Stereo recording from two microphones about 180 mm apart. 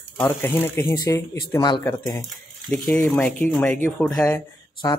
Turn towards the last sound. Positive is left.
turn(degrees=15)  # may be behind; listen again after turning